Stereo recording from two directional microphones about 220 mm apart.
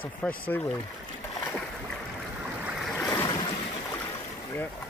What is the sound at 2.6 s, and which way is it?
Waves, centre (ahead or behind).